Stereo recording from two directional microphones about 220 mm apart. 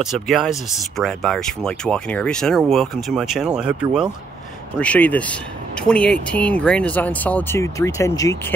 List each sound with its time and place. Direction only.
0.0 s speech: centre (ahead or behind); by 8.5 s 15° left (ahead or behind)